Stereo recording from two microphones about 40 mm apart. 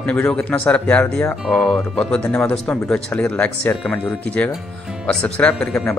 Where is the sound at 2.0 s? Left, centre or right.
Left.